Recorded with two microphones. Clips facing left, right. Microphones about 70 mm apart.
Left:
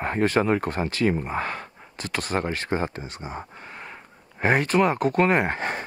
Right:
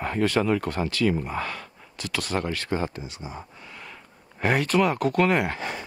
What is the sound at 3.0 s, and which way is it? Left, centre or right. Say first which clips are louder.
Speech: left 3 dB; left.